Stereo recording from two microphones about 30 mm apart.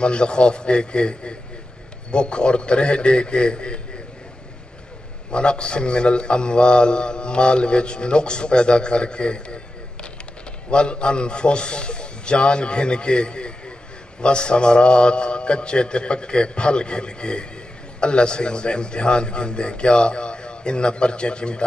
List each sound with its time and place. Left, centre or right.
0.0 s speech: left
5.3 s speech: left
10.7 s speech: left